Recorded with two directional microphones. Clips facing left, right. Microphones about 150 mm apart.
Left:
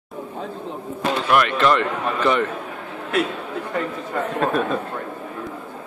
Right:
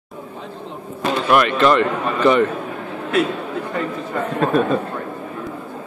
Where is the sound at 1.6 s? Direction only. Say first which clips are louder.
Right 3 dB; 5° right (ahead or behind).